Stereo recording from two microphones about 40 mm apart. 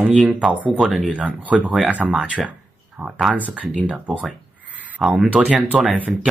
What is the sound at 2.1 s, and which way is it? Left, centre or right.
Speech, right.